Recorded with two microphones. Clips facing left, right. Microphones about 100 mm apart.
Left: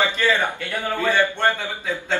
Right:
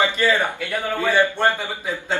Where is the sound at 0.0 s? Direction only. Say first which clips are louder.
Right 1 dB; 15° right (ahead or behind).